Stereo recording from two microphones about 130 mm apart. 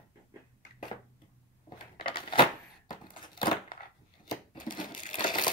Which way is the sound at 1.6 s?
40° left (ahead or behind).